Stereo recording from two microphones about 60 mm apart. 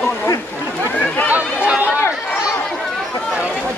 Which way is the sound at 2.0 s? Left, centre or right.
Left.